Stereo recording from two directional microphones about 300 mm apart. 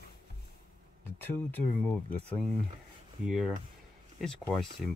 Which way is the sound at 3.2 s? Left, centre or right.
Centre.